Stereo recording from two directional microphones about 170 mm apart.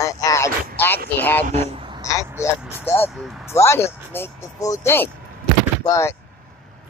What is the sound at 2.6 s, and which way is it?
Speech, 10° right (ahead or behind).